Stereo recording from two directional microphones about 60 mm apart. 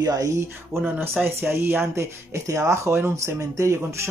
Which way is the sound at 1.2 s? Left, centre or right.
Right.